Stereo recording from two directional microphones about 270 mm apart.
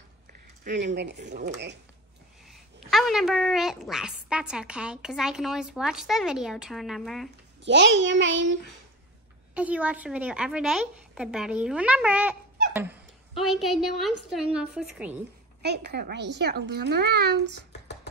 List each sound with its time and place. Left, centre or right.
0.7 s speech: right
2.5 s a woman's voice: centre
7.6 s speech: right
9.5 s a woman's voice: centre
13.4 s a woman's voice: centre
15.6 s speech: right